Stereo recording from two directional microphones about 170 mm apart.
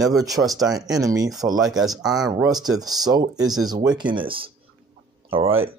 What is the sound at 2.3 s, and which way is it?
Speech, 20° right (ahead or behind).